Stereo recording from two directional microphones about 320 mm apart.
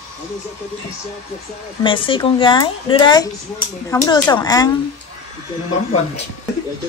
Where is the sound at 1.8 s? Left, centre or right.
Centre.